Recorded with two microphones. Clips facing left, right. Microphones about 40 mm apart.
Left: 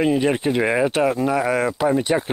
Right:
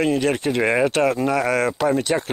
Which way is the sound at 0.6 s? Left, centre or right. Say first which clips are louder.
Right 2 dB; centre.